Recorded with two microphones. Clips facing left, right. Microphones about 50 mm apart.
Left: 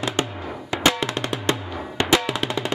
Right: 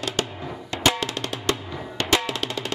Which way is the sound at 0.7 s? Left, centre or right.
Left.